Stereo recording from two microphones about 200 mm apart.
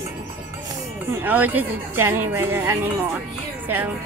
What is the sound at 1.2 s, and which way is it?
A woman's voice, 10° right (ahead or behind).